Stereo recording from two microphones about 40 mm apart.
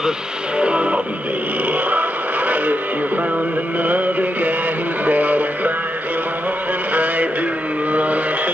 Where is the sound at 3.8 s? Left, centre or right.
Right.